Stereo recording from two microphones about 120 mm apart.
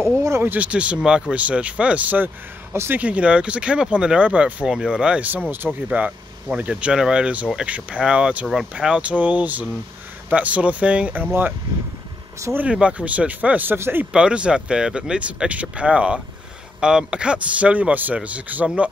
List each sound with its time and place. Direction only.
0.0 s speech: 20° right (ahead or behind)
12.4 s speech: 20° right (ahead or behind)
12.6 s speech: 10° right (ahead or behind)
14.1 s speech: 10° right (ahead or behind)